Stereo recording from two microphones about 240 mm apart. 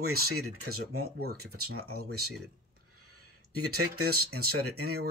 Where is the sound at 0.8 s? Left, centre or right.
Right.